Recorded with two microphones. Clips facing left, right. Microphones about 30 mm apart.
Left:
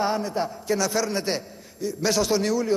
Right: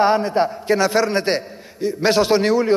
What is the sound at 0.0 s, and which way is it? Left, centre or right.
A man's voice, right.